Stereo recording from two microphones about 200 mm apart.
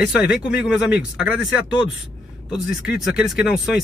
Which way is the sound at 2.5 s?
5° right (ahead or behind).